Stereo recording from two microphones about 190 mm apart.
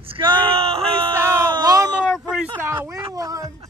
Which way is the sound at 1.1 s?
15° right (ahead or behind).